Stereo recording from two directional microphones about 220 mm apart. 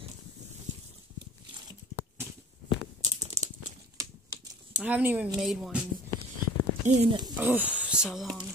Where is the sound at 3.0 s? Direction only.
30° right (ahead or behind).